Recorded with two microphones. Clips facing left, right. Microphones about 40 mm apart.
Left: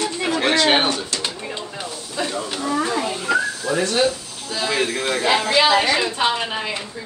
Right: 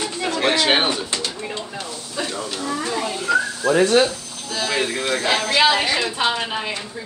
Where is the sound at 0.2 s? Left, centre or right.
Centre.